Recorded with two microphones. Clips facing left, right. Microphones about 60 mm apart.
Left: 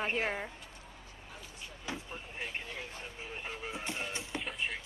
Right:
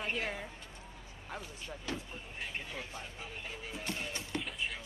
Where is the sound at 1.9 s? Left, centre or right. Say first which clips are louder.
Right 1 dB; centre.